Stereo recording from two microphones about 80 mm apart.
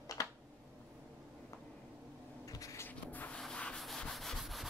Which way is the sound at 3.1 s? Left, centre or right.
Left.